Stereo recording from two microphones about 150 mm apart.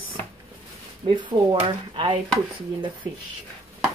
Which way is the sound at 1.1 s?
35° right (ahead or behind).